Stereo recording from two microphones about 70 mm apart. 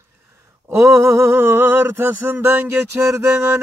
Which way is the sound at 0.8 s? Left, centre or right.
Right.